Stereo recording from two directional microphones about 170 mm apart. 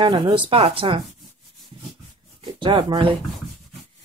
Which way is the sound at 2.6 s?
30° right (ahead or behind).